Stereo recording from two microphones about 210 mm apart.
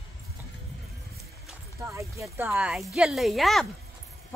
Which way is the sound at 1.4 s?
10° right (ahead or behind).